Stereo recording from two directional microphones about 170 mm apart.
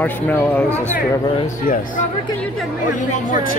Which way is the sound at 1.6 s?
55° left (ahead or behind).